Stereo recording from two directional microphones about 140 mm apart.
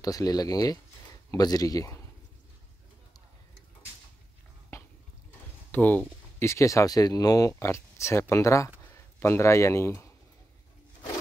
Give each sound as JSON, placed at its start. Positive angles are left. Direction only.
{"t": 0.0, "sound": "speech", "side_deg": 25}
{"t": 4.7, "sound": "a sound", "side_deg": 20}
{"t": 5.7, "sound": "speech", "side_deg": 10}